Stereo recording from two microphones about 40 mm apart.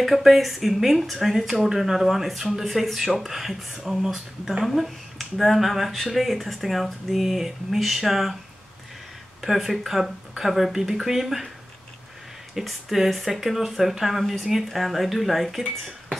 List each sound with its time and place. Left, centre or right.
0.0 s speech: centre
3.7 s speech: centre
9.4 s speech: centre
12.6 s speech: centre